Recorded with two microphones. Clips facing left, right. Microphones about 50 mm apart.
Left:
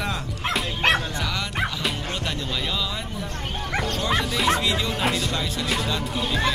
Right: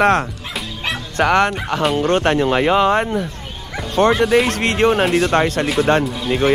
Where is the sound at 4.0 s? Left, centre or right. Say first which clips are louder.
Right 15 dB; right.